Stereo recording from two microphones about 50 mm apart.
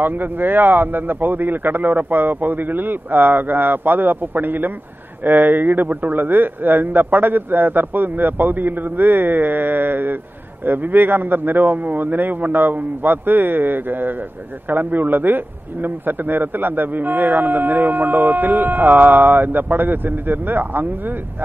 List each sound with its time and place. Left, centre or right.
0.0 s a man's voice: right